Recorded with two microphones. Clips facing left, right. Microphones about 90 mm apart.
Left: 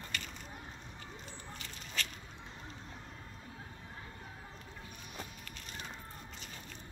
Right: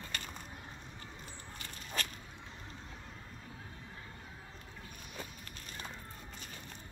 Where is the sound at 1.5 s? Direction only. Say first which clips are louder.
Right 2 dB; 45° right (ahead or behind).